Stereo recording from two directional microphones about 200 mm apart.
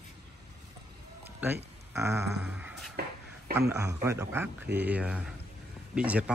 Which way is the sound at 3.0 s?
50° right (ahead or behind).